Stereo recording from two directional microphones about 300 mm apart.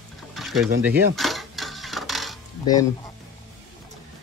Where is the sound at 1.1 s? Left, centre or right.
Centre.